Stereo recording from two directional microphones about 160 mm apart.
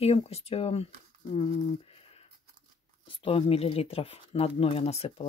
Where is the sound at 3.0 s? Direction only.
35° left (ahead or behind).